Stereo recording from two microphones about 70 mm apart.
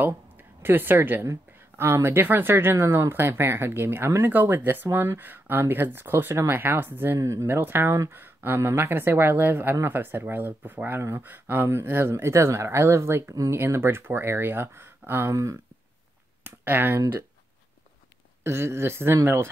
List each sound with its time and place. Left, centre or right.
0.0 s speech: right
1.2 s speech: right
7.2 s speech: right
7.4 s speech: right
16.4 s speech: right
18.4 s speech: right